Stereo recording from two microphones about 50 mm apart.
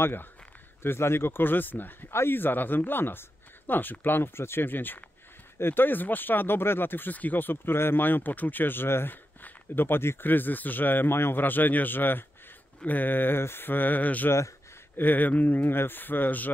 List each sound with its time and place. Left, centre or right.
0.0 s speech: left
0.8 s speech: left